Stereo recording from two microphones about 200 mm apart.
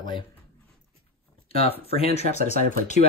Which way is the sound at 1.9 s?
30° left (ahead or behind).